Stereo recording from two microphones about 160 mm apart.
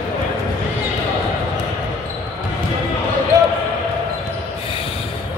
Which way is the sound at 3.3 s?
20° right (ahead or behind).